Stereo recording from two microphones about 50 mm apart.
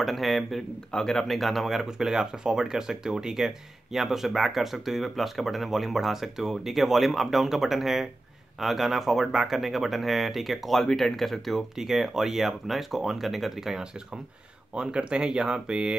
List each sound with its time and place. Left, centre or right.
0.0 s speech: centre
11.7 s speech: centre